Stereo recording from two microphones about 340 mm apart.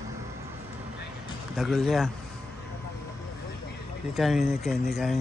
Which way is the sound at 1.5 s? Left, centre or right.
Centre.